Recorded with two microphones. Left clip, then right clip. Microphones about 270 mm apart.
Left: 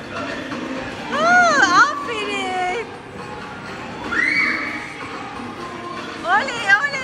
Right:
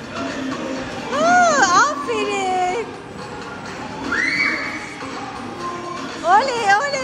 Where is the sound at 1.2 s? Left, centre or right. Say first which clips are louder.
Even; centre.